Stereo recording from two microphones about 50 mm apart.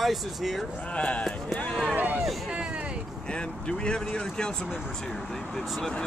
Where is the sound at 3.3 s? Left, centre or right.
Centre.